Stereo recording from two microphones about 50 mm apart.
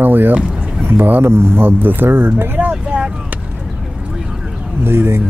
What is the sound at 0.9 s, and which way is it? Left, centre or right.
Speech, right.